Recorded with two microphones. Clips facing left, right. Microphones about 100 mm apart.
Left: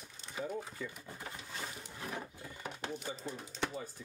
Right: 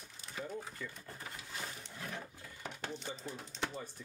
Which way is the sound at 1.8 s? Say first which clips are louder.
Left 2 dB; 10° left (ahead or behind).